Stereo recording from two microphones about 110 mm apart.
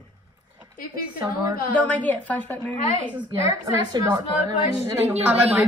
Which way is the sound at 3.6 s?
35° right (ahead or behind).